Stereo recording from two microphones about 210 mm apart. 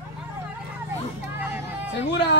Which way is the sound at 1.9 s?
55° left (ahead or behind).